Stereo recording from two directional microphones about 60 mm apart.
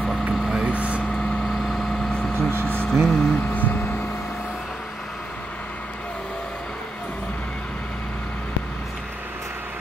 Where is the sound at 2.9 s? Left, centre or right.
Centre.